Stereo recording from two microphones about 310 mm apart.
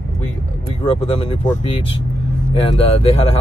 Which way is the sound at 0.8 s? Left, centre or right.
Centre.